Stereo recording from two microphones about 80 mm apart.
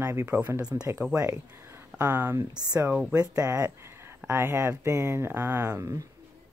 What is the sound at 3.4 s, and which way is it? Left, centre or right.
Speech, right.